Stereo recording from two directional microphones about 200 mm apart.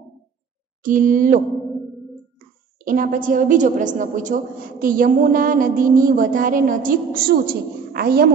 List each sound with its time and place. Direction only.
0.8 s a woman's voice: 40° right (ahead or behind)